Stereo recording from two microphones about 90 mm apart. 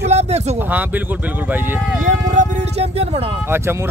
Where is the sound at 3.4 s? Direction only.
25° right (ahead or behind).